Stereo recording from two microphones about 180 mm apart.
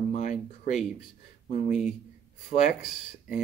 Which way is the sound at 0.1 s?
40° left (ahead or behind).